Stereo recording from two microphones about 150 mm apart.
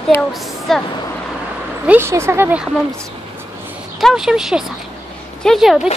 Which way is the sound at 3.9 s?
Centre (ahead or behind).